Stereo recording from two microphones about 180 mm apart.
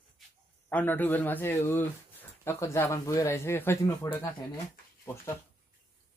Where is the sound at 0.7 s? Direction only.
10° left (ahead or behind).